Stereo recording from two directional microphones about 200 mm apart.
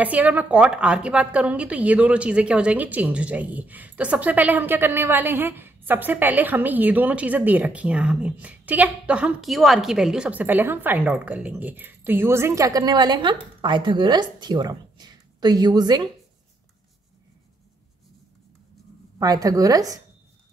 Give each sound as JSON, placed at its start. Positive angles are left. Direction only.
{"t": 0.0, "sound": "a woman's voice", "side_deg": -10}
{"t": 19.1, "sound": "a woman's voice", "side_deg": -20}